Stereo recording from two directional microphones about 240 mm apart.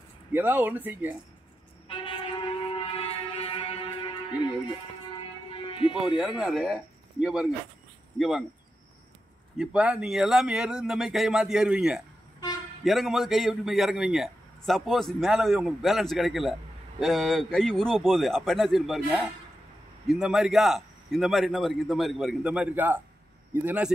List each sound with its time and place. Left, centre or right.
0.3 s speech: centre
1.9 s music: left
6.0 s a man's voice: centre
9.6 s a man's voice: centre